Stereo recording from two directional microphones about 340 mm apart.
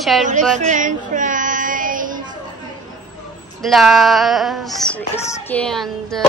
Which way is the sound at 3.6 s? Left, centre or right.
Centre.